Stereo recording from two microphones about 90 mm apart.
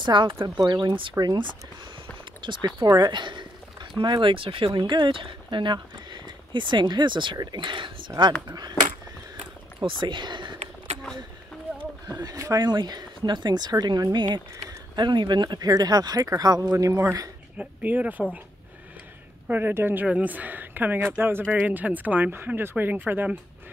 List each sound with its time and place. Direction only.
0.0 s speech: 60° right (ahead or behind)
0.6 s speech: 55° right (ahead or behind)
1.2 s speech: 55° right (ahead or behind)
8.2 s speech: 50° right (ahead or behind)
9.8 s speech: 65° right (ahead or behind)
12.1 s speech: 40° right (ahead or behind)
16.7 s a man's voice: 30° right (ahead or behind)
17.6 s speech: 20° right (ahead or behind)
19.4 s speech: 20° right (ahead or behind)